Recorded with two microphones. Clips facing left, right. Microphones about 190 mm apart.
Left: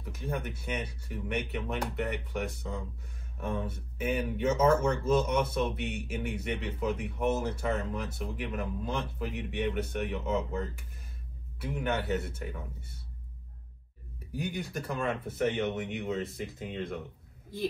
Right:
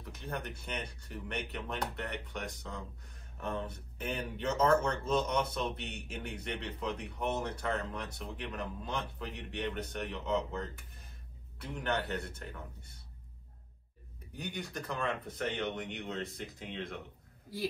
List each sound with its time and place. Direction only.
0.0 s speech: 5° left (ahead or behind)
14.3 s speech: 5° left (ahead or behind)